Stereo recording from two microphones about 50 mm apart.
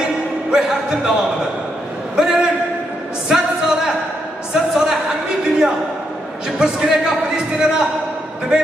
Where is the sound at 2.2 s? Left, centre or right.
Centre.